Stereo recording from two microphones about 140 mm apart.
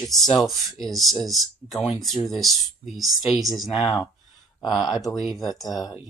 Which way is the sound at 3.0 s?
25° right (ahead or behind).